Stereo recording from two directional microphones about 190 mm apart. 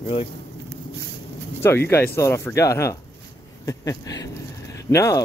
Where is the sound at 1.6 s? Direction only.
10° left (ahead or behind).